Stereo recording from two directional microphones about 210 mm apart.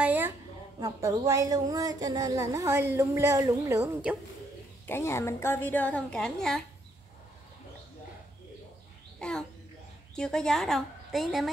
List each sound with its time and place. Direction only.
0.0 s a sound: 10° right (ahead or behind)
0.7 s a woman's voice: 15° right (ahead or behind)
4.8 s a woman's voice: 10° left (ahead or behind)
9.2 s a woman's voice: 5° left (ahead or behind)